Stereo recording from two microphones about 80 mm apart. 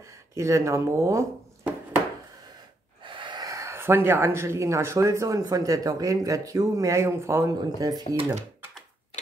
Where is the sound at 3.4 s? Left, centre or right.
Right.